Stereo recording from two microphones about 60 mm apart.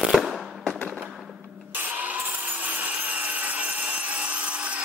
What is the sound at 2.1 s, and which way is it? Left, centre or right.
Wood, right.